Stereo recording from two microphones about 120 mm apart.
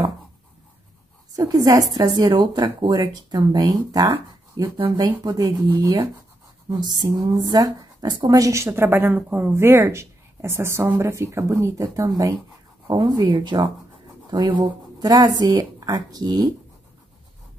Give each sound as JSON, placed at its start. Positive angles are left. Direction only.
{"t": 1.3, "sound": "a woman's voice", "side_deg": -30}
{"t": 12.8, "sound": "speech", "side_deg": -35}